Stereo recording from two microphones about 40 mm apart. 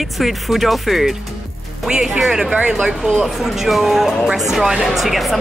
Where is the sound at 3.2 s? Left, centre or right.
Centre.